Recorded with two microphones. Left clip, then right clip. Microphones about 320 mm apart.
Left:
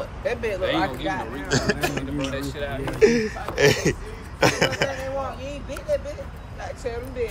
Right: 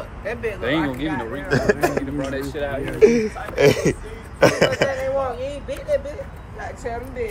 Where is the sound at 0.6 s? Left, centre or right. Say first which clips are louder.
Right 3 dB; right.